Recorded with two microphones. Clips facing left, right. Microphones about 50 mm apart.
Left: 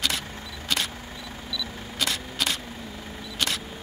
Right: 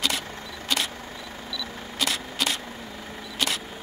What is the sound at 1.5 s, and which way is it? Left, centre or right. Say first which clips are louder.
Single-lens reflex camera: left 1 dB; centre.